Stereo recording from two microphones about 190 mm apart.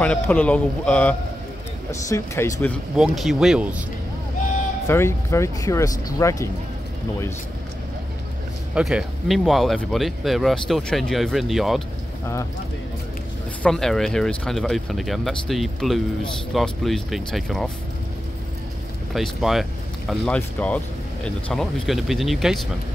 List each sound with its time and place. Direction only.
0.0 s speech: 5° left (ahead or behind)
3.0 s speech: centre (ahead or behind)
4.8 s speech: 15° left (ahead or behind)
8.7 s speech: 5° right (ahead or behind)
13.6 s speech: 5° left (ahead or behind)
19.1 s speech: centre (ahead or behind)